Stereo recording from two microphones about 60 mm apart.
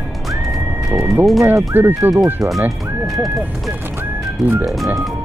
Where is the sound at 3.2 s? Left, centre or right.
Centre.